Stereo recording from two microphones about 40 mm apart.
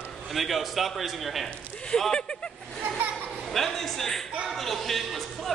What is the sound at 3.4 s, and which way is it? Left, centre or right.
A man's voice, centre.